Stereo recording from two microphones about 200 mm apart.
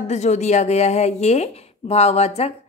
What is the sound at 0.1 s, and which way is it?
A woman's voice, 35° left (ahead or behind).